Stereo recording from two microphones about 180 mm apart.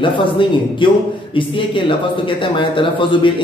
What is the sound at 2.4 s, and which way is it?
Speech, 30° left (ahead or behind).